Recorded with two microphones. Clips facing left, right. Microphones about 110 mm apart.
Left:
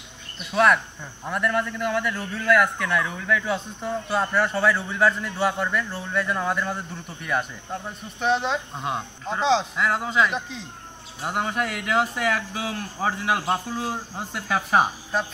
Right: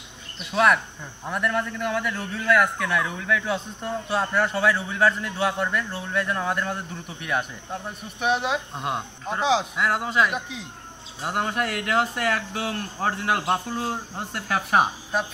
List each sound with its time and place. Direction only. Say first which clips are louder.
0.5 s a man's voice: left 1 dB; centre (ahead or behind)